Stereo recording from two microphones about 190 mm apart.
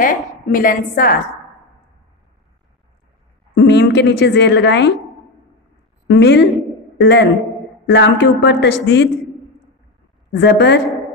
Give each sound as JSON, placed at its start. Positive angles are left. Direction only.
{"t": 0.5, "sound": "a woman's voice", "side_deg": 45}
{"t": 3.5, "sound": "a woman's voice", "side_deg": 65}
{"t": 6.0, "sound": "a woman's voice", "side_deg": 65}
{"t": 10.3, "sound": "a woman's voice", "side_deg": 60}